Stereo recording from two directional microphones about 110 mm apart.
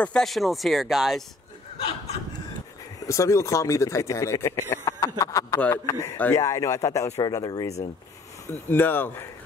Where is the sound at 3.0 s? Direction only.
30° left (ahead or behind).